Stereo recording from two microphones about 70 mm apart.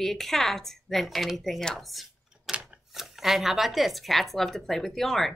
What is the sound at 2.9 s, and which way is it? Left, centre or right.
A woman's voice, centre.